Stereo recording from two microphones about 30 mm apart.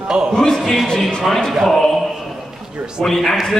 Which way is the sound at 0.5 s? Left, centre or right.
Centre.